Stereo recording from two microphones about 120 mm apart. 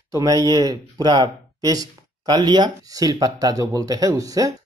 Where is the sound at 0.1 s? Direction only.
30° right (ahead or behind).